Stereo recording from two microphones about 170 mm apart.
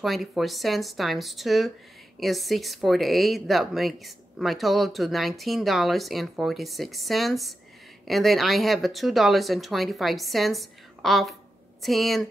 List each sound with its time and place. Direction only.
0.0 s speech: centre (ahead or behind)